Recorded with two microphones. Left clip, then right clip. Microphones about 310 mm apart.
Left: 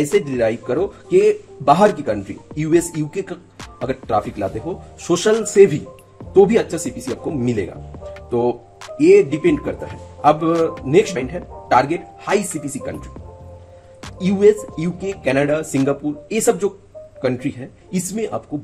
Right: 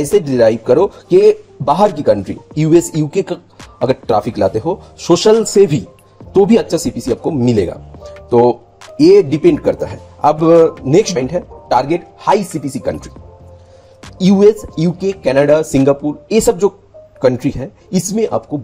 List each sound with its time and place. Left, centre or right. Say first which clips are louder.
0.2 s a man's voice: right 8 dB; centre
10.5 s speech: right 10 dB; centre
10.9 s speech: right 4 dB; centre
14.1 s speech: right 4 dB; centre